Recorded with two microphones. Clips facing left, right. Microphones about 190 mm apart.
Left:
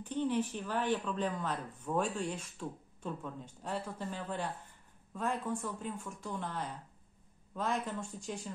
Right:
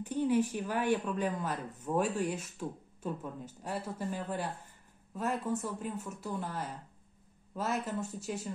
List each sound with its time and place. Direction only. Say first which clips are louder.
0.0 s speech: right 4 dB; 10° right (ahead or behind)